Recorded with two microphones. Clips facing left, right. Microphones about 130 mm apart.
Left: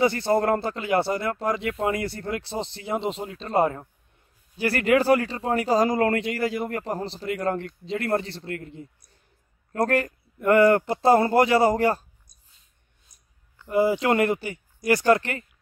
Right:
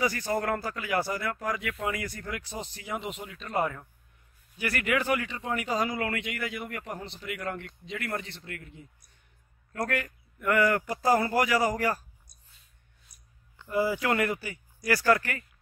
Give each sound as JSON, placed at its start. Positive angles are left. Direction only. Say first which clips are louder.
{"t": 0.0, "sound": "speech", "louder": "left 7 dB", "side_deg": 30}
{"t": 13.1, "sound": "clicking", "louder": "right 1 dB", "side_deg": 90}
{"t": 13.7, "sound": "speech", "louder": "left 6 dB", "side_deg": 25}